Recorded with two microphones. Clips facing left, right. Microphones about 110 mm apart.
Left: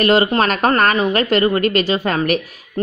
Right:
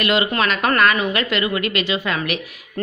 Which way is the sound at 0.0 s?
40° left (ahead or behind).